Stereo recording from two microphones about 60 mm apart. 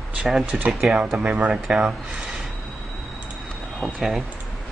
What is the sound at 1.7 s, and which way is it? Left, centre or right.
Speech, centre.